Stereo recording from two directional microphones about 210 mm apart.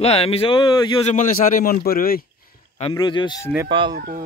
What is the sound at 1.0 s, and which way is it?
A man's voice, 40° left (ahead or behind).